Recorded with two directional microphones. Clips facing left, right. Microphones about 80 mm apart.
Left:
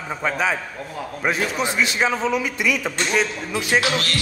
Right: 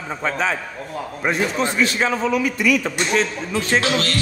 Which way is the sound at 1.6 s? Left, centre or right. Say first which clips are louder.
Right 2 dB; centre.